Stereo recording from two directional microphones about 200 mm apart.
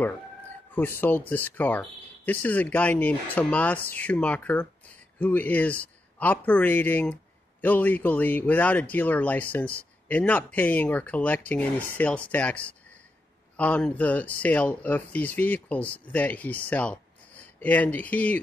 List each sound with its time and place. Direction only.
0.7 s speech: 10° left (ahead or behind)